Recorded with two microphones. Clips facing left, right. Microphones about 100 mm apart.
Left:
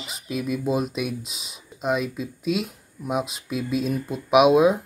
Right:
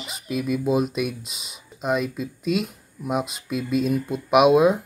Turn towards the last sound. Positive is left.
turn(degrees=0)  # may be behind; listen again after turning